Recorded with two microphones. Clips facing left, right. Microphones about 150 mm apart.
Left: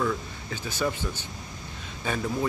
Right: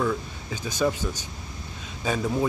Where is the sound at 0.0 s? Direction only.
5° right (ahead or behind).